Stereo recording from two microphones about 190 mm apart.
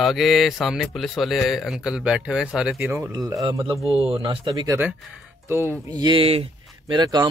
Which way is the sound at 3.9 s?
30° right (ahead or behind).